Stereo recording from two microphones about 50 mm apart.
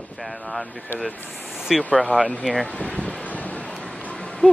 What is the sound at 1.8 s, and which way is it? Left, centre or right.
Speech, left.